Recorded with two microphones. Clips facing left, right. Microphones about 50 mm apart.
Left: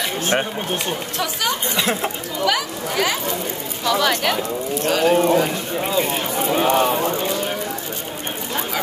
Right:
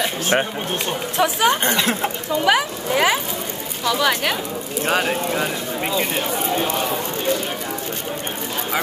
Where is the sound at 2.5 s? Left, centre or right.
Right.